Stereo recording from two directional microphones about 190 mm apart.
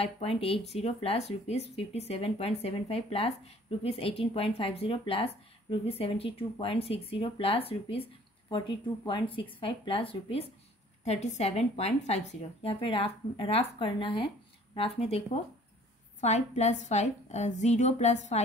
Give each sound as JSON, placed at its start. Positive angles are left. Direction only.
{"t": 0.0, "sound": "a woman's voice", "side_deg": 30}